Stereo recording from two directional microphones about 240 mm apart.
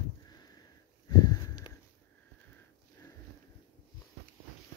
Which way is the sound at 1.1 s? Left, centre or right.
Centre.